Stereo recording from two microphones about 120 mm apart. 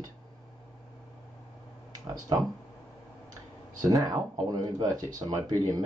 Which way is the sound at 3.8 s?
30° right (ahead or behind).